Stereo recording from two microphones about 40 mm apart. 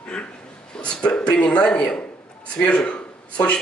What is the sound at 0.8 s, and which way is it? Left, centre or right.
Speech, left.